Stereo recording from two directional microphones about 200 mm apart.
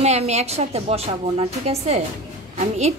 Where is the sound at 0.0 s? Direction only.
35° right (ahead or behind).